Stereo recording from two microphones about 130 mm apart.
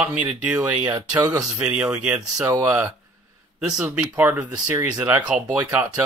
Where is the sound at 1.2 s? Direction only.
30° right (ahead or behind).